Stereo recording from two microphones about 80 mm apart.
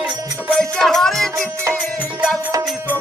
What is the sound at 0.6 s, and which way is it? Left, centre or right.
Music, centre.